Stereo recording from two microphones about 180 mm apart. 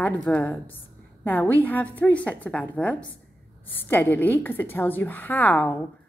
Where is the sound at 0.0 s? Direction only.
10° left (ahead or behind).